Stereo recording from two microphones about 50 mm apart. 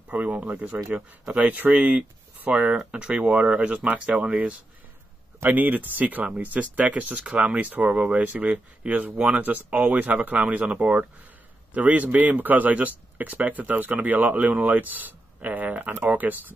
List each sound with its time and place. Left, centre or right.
0.1 s speech: right